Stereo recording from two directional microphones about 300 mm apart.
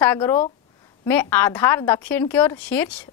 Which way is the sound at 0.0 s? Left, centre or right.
Centre.